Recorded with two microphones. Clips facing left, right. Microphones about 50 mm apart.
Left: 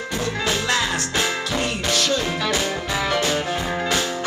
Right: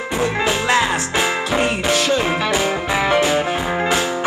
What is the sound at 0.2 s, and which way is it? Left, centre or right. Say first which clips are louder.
Music: right 5 dB; centre.